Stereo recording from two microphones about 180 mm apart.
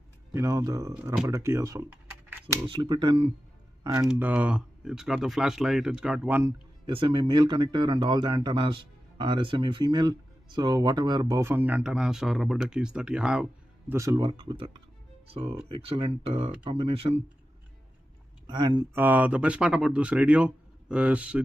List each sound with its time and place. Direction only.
0.3 s speech: 15° right (ahead or behind)
4.1 s speech: 10° right (ahead or behind)
6.9 s speech: 30° right (ahead or behind)
18.5 s speech: 25° right (ahead or behind)
18.9 s speech: 10° right (ahead or behind)